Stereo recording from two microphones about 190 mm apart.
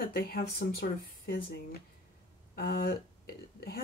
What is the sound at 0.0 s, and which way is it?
Speech, 50° left (ahead or behind).